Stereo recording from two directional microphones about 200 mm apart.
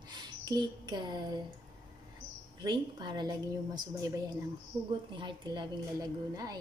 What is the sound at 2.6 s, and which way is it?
Speech, 20° right (ahead or behind).